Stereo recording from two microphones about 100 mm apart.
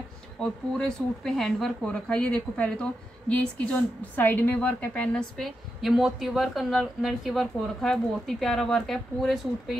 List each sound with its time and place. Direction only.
0.4 s speech: 5° left (ahead or behind)
5.4 s a woman's voice: centre (ahead or behind)